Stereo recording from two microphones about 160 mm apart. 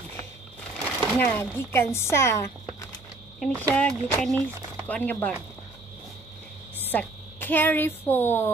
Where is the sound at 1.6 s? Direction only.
15° left (ahead or behind).